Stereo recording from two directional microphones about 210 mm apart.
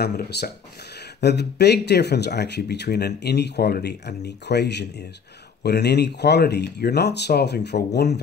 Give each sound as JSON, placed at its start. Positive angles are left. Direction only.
{"t": 0.0, "sound": "speech", "side_deg": 50}